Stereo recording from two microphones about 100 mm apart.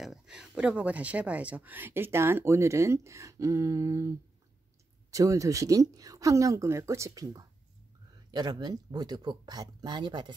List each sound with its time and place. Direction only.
0.0 s speech: 5° right (ahead or behind); by 4.1 s 30° right (ahead or behind)
5.1 s speech: 35° right (ahead or behind); by 10.3 s 50° right (ahead or behind)